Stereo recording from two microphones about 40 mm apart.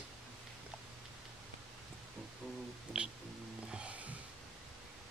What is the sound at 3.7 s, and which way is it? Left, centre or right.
Music, right.